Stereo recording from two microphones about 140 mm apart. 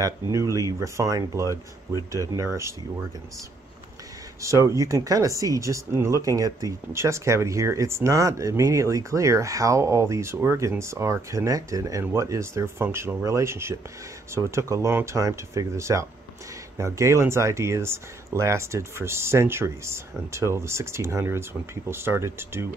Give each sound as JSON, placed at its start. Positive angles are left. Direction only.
{"t": 0.0, "sound": "speech", "side_deg": -20}
{"t": 4.4, "sound": "speech", "side_deg": -20}